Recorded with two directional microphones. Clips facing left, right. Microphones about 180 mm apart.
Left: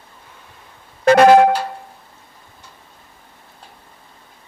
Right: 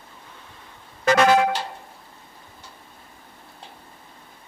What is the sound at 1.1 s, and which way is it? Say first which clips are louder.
Music: left 8 dB; 55° left (ahead or behind).